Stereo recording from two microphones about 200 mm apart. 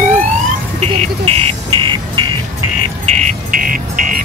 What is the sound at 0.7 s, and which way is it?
Music, 30° right (ahead or behind).